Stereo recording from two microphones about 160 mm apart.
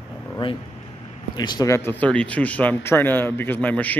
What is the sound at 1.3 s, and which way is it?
A man's voice, 25° left (ahead or behind).